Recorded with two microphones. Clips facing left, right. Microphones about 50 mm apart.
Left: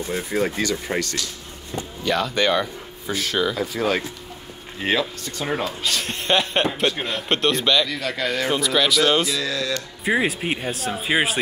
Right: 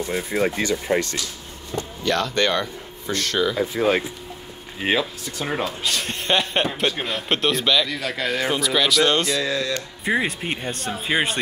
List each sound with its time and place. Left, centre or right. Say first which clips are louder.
0.1 s speech: even; right
1.8 s speech: even; centre
3.6 s speech: right 2 dB; right
4.7 s speech: even; centre
9.4 s speech: right 1 dB; right
10.0 s speech: left 2 dB; centre